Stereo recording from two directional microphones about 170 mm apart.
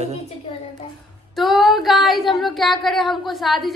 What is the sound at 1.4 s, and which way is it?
Female singing, centre (ahead or behind).